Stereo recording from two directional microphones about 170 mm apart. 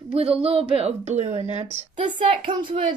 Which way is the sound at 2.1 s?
30° right (ahead or behind).